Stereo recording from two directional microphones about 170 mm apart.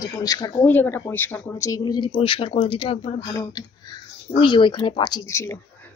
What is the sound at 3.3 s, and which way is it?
Speech, 20° left (ahead or behind).